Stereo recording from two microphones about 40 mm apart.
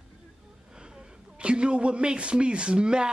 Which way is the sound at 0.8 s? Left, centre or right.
Right.